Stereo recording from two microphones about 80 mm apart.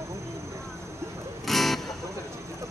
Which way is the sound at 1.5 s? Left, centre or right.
Centre.